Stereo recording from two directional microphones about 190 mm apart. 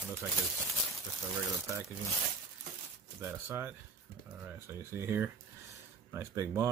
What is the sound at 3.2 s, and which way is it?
Speech, 15° right (ahead or behind).